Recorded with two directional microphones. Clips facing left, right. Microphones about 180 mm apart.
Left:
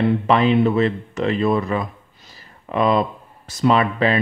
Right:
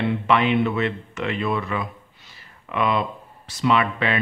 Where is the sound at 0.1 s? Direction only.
35° left (ahead or behind).